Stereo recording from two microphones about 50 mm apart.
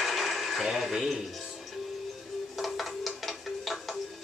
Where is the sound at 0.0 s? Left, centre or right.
Centre.